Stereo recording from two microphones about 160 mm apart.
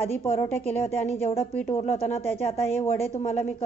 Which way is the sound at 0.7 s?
40° left (ahead or behind).